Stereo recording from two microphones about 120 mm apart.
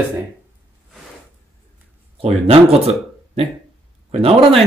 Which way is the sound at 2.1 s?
55° right (ahead or behind).